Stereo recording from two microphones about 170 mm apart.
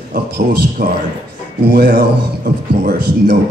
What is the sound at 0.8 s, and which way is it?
A man's voice, 70° right (ahead or behind).